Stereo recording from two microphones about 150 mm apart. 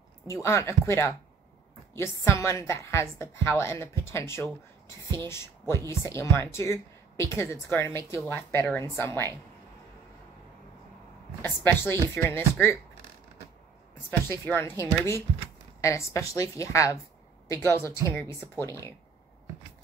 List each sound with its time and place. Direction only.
0.3 s a woman's voice: 20° left (ahead or behind)
5.2 s a woman's voice: 20° left (ahead or behind)
11.4 s a woman's voice: 15° left (ahead or behind)
14.4 s a woman's voice: 15° left (ahead or behind)